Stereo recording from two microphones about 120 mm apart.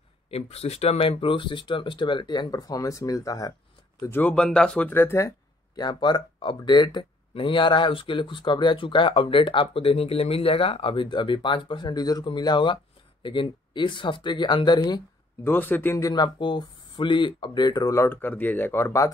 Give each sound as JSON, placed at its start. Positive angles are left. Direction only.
{"t": 0.3, "sound": "speech", "side_deg": 60}
{"t": 4.0, "sound": "speech", "side_deg": 15}
{"t": 5.8, "sound": "speech", "side_deg": 35}
{"t": 15.4, "sound": "speech", "side_deg": 15}
{"t": 16.0, "sound": "speech", "side_deg": 30}